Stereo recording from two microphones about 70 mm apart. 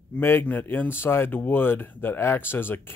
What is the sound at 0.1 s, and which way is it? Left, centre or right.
Speech, left.